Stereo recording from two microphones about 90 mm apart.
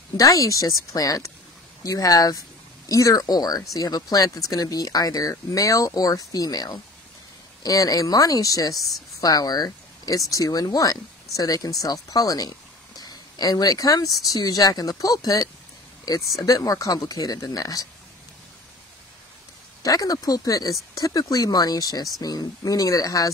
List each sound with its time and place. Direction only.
0.2 s speech: 40° left (ahead or behind)
19.8 s speech: 45° left (ahead or behind)